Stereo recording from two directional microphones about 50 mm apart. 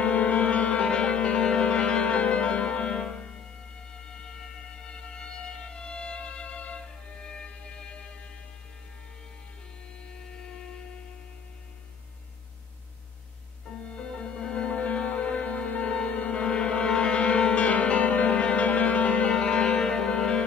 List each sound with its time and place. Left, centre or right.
0.0 s music: left
13.9 s music: centre